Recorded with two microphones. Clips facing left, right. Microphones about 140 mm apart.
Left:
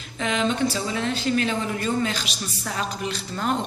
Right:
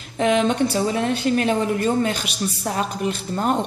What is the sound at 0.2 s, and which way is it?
A woman's voice, 55° right (ahead or behind).